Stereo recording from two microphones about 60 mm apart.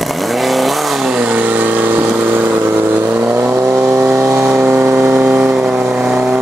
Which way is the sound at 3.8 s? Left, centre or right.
Right.